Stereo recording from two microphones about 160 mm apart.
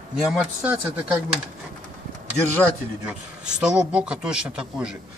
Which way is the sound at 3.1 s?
5° right (ahead or behind).